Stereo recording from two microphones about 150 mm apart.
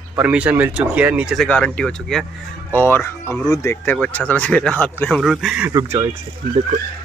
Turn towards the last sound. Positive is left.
turn(degrees=-25)  # may be behind; listen again after turning